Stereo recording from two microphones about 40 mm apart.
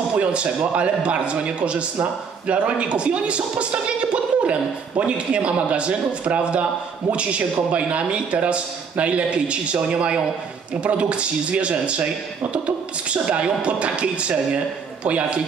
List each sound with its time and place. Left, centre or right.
0.2 s a man's voice: right